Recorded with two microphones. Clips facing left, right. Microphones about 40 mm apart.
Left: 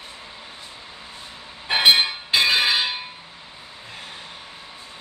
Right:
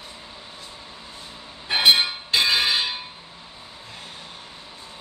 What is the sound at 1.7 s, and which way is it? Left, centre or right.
Bell, centre.